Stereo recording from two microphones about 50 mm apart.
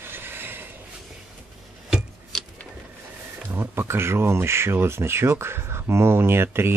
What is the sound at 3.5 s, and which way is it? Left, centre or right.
Speech, right.